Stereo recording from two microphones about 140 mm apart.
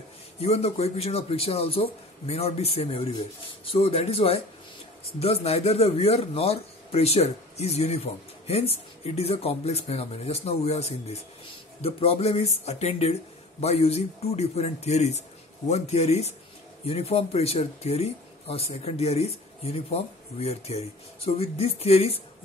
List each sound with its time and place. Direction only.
0.4 s a man's voice: 45° left (ahead or behind)